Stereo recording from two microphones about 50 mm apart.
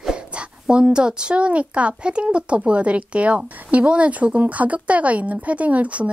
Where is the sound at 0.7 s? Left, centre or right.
Centre.